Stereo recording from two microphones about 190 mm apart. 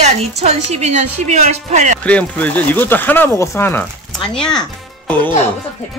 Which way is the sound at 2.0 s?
10° left (ahead or behind).